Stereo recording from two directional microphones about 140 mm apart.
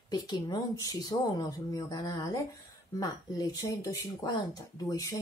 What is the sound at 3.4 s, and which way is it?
Speech, 25° left (ahead or behind).